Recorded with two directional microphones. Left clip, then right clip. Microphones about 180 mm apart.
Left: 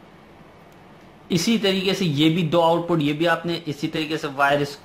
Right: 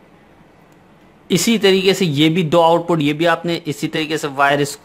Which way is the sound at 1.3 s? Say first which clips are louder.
Right 7 dB; 45° right (ahead or behind).